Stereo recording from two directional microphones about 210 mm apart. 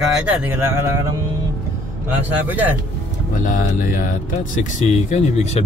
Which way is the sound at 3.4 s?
40° left (ahead or behind).